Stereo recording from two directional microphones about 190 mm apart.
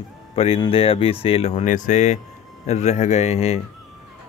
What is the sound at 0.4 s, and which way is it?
Speech, 30° left (ahead or behind).